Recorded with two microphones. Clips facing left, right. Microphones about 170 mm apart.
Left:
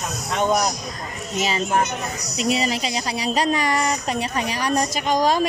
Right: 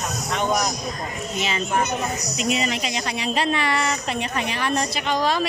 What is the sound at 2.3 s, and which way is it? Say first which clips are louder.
Speech: left 4 dB; 35° left (ahead or behind).